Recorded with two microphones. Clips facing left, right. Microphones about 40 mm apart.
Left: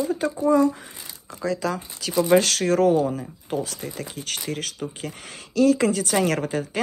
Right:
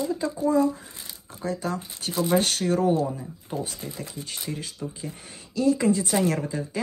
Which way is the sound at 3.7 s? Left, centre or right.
Left.